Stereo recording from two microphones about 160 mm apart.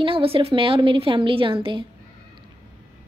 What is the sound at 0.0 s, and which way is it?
A woman's voice, 35° right (ahead or behind).